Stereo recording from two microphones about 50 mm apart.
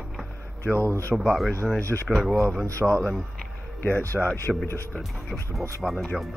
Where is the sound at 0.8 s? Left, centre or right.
Right.